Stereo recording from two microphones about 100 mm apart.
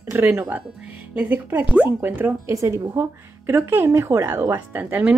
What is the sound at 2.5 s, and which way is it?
Speech, 30° right (ahead or behind).